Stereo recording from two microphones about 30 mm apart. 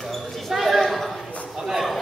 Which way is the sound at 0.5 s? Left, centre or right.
Centre.